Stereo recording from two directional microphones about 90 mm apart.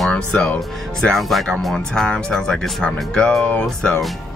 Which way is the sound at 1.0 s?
Centre (ahead or behind).